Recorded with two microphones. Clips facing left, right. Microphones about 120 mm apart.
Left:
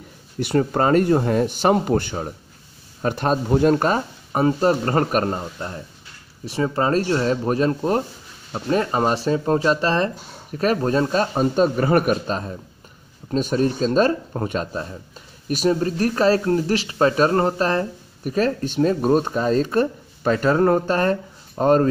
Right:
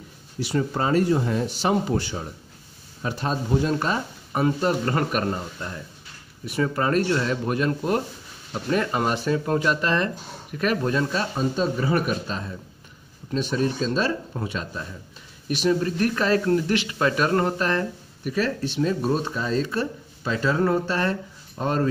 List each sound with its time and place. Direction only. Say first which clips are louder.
0.4 s speech: left 5 dB; 55° left (ahead or behind)